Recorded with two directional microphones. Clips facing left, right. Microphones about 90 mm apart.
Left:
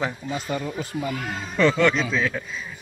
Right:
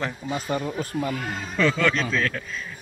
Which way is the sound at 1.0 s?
Centre (ahead or behind).